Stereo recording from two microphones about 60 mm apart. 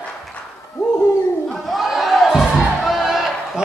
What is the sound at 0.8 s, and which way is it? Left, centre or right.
Dog, centre.